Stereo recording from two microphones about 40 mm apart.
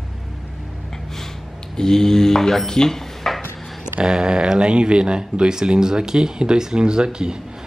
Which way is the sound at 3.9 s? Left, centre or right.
Centre.